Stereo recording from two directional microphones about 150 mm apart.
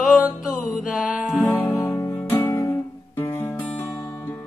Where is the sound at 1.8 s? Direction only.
15° left (ahead or behind).